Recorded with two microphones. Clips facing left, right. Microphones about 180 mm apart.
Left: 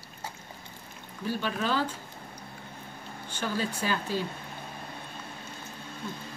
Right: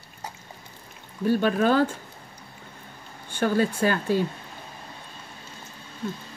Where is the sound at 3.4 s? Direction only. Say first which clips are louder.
Right 9 dB; 55° right (ahead or behind).